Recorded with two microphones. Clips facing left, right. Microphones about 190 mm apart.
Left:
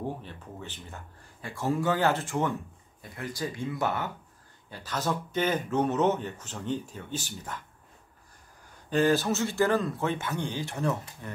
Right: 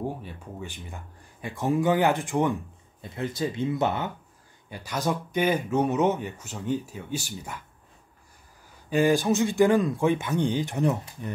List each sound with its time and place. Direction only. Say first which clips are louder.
0.2 s speech: right 3 dB; 10° right (ahead or behind)
8.9 s speech: right 3 dB; 15° right (ahead or behind)